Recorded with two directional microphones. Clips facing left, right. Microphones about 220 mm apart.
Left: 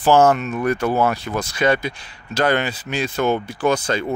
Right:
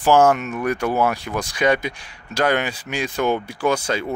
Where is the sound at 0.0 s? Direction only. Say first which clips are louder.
Left 1 dB; 10° right (ahead or behind).